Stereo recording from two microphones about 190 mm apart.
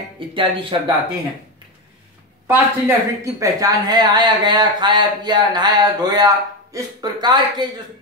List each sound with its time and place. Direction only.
0.3 s speech: 25° right (ahead or behind)
2.4 s speech: 10° right (ahead or behind)